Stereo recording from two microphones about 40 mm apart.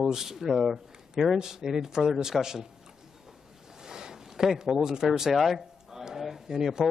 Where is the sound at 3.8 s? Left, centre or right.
Centre.